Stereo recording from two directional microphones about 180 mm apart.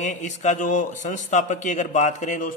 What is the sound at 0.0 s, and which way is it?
A man's voice, 40° left (ahead or behind).